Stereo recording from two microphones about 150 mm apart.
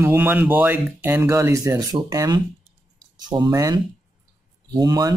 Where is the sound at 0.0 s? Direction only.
15° right (ahead or behind).